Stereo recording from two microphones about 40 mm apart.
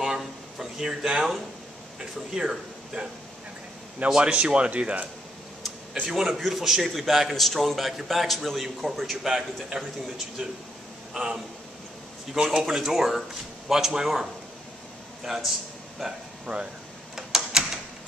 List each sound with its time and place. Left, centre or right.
0.0 s a sound: centre
2.0 s speech: centre
4.1 s speech: right
6.0 s a man's voice: centre
6.3 s a man's voice: centre
17.1 s a sound: centre